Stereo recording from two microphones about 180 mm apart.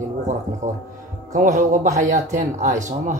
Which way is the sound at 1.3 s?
45° right (ahead or behind).